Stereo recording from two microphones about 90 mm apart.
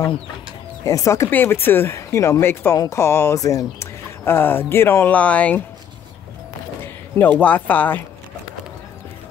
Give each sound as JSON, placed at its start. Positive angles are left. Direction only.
{"t": 0.8, "sound": "speech", "side_deg": 35}
{"t": 1.3, "sound": "speech", "side_deg": 25}
{"t": 4.2, "sound": "speech", "side_deg": 25}
{"t": 6.8, "sound": "speech", "side_deg": 20}